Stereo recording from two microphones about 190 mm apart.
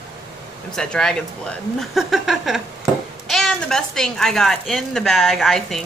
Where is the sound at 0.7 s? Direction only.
5° left (ahead or behind).